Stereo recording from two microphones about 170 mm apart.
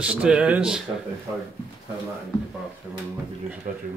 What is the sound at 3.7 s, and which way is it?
Speech, 50° right (ahead or behind).